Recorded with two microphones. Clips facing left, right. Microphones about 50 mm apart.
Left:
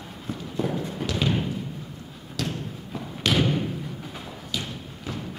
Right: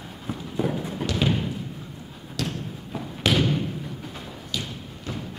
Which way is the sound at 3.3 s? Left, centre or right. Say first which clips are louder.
Even; centre.